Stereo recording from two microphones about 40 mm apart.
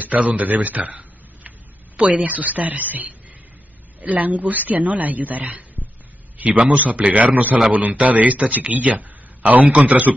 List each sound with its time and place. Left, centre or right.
0.0 s a man's voice: right